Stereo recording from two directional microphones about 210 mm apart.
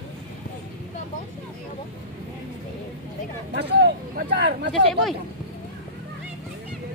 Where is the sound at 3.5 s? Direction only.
50° right (ahead or behind).